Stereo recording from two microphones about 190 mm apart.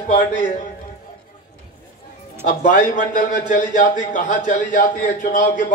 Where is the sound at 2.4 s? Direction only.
45° left (ahead or behind).